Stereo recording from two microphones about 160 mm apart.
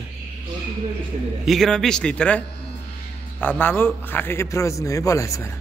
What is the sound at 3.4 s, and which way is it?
A man's voice, 10° left (ahead or behind).